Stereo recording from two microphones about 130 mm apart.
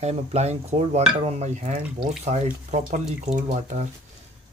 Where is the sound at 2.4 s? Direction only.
75° right (ahead or behind).